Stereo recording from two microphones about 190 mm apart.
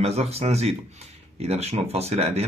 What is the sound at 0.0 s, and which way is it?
Speech, 35° right (ahead or behind).